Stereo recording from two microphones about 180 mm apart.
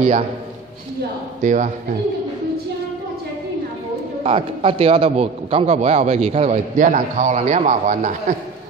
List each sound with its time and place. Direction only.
1.4 s speech: 45° right (ahead or behind)
4.2 s a man's voice: 30° right (ahead or behind)